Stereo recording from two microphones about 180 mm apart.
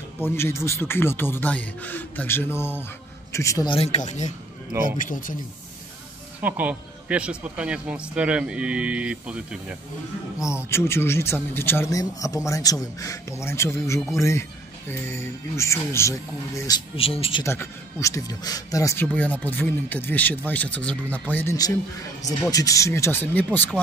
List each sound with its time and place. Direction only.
0.2 s speech: 15° left (ahead or behind)
3.7 s speech: 35° left (ahead or behind)
6.4 s speech: 10° right (ahead or behind)
10.7 s speech: 15° left (ahead or behind)
16.9 s speech: 30° left (ahead or behind)
17.4 s speech: 15° left (ahead or behind)
21.5 s speech: 20° left (ahead or behind)